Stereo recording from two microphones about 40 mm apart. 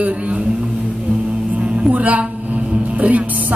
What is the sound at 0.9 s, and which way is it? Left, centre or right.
Music, right.